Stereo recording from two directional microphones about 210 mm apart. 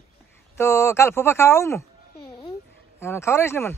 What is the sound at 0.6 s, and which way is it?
Speech, 15° left (ahead or behind).